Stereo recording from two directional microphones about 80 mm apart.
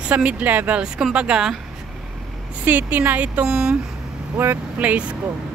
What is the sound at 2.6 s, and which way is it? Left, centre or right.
Speech, right.